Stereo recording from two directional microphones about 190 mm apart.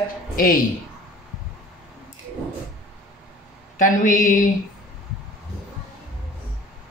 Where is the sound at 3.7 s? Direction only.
45° left (ahead or behind).